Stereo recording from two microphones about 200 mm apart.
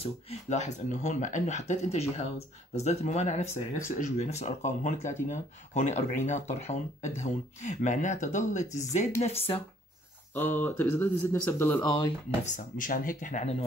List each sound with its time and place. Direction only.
0.0 s speech: 35° left (ahead or behind)
10.3 s speech: 10° left (ahead or behind)
12.4 s speech: 40° left (ahead or behind)